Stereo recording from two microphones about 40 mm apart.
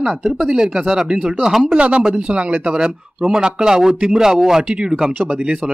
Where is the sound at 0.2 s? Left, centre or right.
Centre.